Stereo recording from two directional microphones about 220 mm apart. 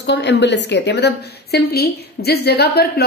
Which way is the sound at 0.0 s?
50° left (ahead or behind).